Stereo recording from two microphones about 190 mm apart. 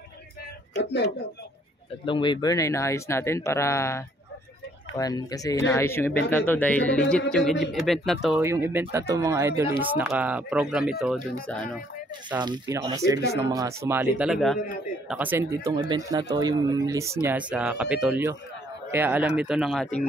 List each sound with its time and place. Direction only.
0.7 s speech: 65° left (ahead or behind)
2.0 s speech: 25° left (ahead or behind); by 8.4 s centre (ahead or behind)
8.4 s speech: 15° right (ahead or behind); by 11.8 s 5° left (ahead or behind)
12.4 s speech: 20° right (ahead or behind); by 19.9 s centre (ahead or behind)